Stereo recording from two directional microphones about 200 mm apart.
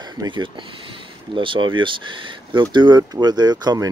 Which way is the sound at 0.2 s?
25° right (ahead or behind).